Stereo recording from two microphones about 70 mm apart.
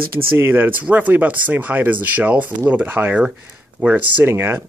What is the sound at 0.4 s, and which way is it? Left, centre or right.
Speech, right.